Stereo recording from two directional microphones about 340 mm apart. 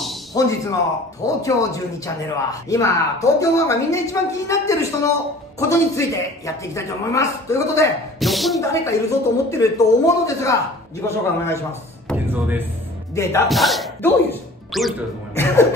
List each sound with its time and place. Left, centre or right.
0.3 s speech: centre
12.1 s a sound: centre
13.1 s speech: centre